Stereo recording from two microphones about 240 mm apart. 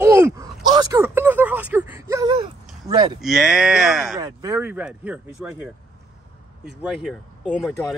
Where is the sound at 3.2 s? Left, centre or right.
Centre.